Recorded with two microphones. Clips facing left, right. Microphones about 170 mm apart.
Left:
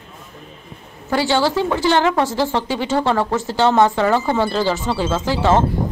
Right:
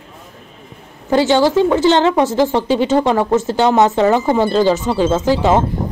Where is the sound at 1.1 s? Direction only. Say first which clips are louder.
Right 5 dB; 20° right (ahead or behind).